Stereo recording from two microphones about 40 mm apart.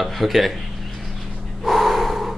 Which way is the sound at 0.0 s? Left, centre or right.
Centre.